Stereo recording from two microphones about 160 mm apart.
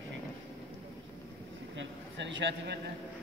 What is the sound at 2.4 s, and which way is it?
Speech, 90° right.